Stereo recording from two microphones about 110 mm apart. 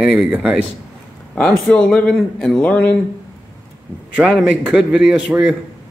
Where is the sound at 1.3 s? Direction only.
10° left (ahead or behind).